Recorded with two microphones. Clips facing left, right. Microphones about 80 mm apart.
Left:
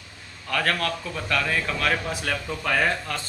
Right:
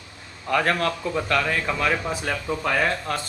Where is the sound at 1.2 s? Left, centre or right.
Centre.